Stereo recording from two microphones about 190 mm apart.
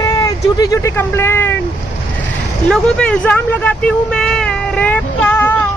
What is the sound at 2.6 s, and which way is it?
Speech, 5° left (ahead or behind).